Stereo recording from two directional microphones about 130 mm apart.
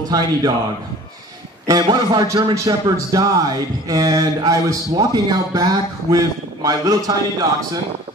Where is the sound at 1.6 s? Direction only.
30° right (ahead or behind).